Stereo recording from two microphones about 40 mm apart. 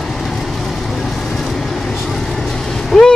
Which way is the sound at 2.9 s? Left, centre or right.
Centre.